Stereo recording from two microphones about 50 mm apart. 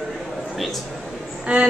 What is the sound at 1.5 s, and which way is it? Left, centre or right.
Music, right.